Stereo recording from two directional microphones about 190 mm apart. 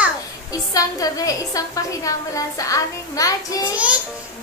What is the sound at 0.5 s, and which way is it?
A woman's voice, 20° left (ahead or behind).